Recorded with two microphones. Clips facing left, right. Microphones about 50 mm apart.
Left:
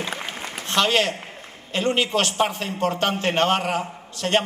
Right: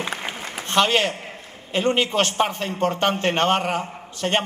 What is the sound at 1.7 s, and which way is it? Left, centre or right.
A man's voice, centre.